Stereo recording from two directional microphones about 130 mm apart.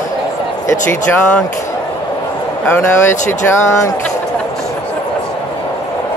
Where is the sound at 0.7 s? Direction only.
20° left (ahead or behind).